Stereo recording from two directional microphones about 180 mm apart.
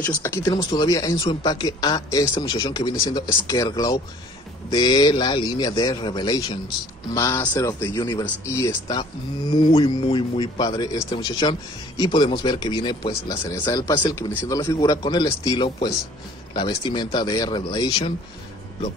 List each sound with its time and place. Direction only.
0.0 s a man's voice: 15° left (ahead or behind)